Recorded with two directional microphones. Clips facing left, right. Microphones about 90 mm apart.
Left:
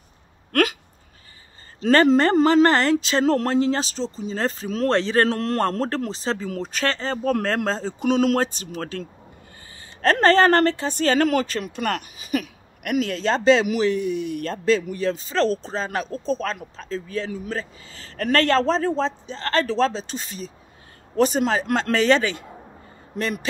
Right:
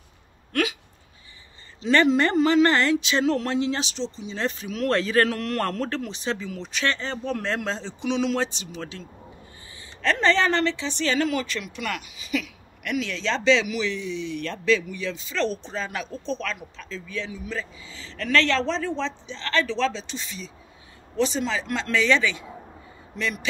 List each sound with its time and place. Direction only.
0.5 s hiccup: 50° left (ahead or behind)
1.8 s a woman's voice: 45° left (ahead or behind)
10.0 s a woman's voice: 45° left (ahead or behind)
14.5 s a woman's voice: 40° left (ahead or behind)